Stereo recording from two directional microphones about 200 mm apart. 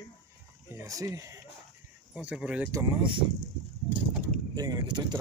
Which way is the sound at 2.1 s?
5° right (ahead or behind).